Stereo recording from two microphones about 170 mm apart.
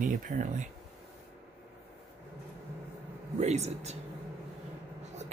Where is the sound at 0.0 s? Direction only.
50° right (ahead or behind).